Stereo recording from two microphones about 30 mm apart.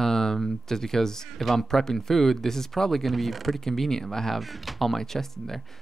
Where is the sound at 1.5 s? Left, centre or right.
Centre.